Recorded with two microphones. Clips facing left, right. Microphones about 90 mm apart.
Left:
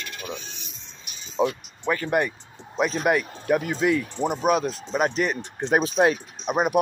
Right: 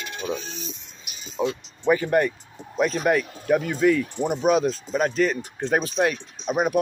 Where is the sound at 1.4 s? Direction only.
20° left (ahead or behind).